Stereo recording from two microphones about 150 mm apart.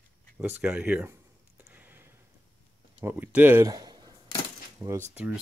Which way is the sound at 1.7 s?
15° right (ahead or behind).